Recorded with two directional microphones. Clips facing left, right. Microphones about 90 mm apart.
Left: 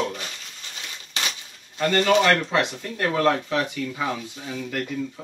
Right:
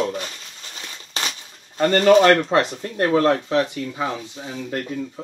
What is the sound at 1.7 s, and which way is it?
Speech, 45° right (ahead or behind).